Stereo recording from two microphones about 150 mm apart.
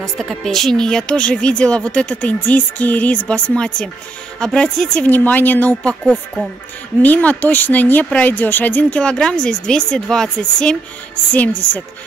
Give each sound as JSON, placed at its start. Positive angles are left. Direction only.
{"t": 0.0, "sound": "speech", "side_deg": 0}